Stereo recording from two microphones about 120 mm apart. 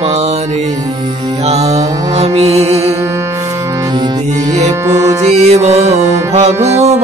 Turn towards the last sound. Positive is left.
turn(degrees=-65)  # may be behind; listen again after turning